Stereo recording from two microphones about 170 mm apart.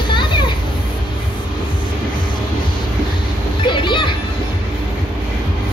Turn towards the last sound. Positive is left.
turn(degrees=30)  # may be behind; listen again after turning